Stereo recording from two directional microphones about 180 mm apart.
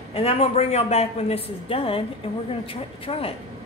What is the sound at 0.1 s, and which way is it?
A woman's voice, 30° left (ahead or behind).